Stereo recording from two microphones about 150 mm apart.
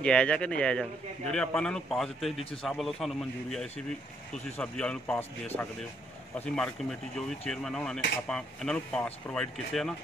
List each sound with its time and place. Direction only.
0.0 s speech: 5° left (ahead or behind)
6.4 s speech: 5° left (ahead or behind)